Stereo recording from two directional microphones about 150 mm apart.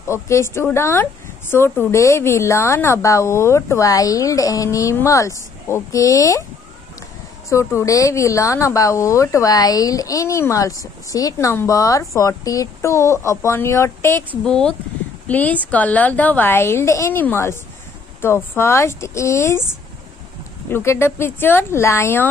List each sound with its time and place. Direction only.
0.1 s a woman's voice: 15° left (ahead or behind)
7.4 s speech: 20° left (ahead or behind)
14.4 s a woman's voice: 5° left (ahead or behind)
20.7 s a woman's voice: 15° left (ahead or behind)